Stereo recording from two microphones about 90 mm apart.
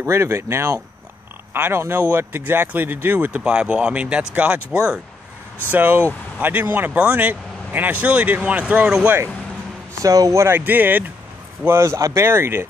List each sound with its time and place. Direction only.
0.0 s speech: 30° right (ahead or behind)
5.7 s speech: 20° right (ahead or behind)
10.0 s speech: 40° right (ahead or behind)